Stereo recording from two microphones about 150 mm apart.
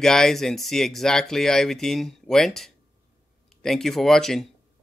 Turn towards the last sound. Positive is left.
turn(degrees=0)  # may be behind; listen again after turning